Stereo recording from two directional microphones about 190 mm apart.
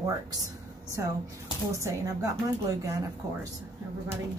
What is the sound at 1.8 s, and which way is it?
Speech, 15° right (ahead or behind).